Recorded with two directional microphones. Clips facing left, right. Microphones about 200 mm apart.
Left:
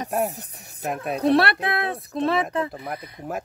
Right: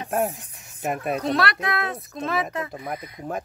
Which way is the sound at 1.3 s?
30° left (ahead or behind).